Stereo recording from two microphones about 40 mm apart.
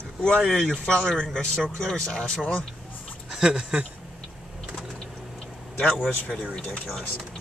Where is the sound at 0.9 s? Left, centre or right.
Centre.